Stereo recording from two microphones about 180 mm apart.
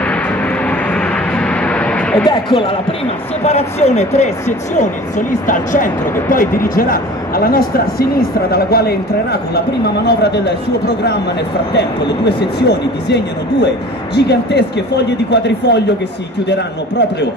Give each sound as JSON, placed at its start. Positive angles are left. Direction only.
{"t": 0.0, "sound": "vehicle", "side_deg": 5}
{"t": 2.2, "sound": "a man's voice", "side_deg": 30}
{"t": 12.3, "sound": "speech", "side_deg": 65}